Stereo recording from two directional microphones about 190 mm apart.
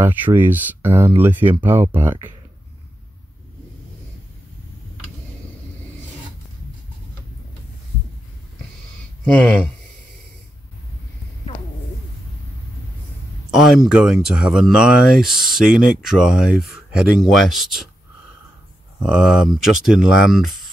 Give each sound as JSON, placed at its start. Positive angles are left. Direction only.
{"t": 0.0, "sound": "speech", "side_deg": -10}
{"t": 9.2, "sound": "speech", "side_deg": 5}
{"t": 13.5, "sound": "speech", "side_deg": 0}
{"t": 18.9, "sound": "speech", "side_deg": -5}